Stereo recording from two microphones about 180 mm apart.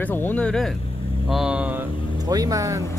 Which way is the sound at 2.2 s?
20° right (ahead or behind).